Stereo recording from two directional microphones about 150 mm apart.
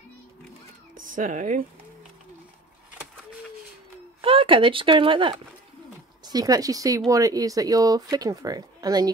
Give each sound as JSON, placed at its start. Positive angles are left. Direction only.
{"t": 1.0, "sound": "speech", "side_deg": -60}
{"t": 4.2, "sound": "speech", "side_deg": -35}